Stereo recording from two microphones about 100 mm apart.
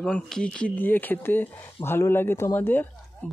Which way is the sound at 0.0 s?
10° left (ahead or behind).